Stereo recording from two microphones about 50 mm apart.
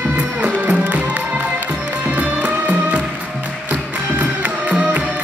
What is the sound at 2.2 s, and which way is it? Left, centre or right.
Music, right.